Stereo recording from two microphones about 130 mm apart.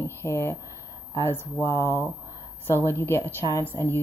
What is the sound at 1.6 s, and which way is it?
Speech, 20° left (ahead or behind).